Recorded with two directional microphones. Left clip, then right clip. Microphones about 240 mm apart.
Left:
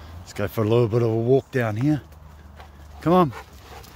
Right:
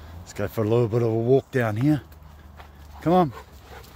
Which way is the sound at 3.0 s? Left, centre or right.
Centre.